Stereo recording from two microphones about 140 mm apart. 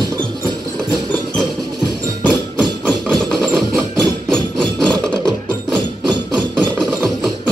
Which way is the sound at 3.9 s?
5° left (ahead or behind).